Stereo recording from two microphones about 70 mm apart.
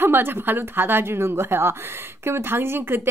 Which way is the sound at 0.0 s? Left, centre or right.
Right.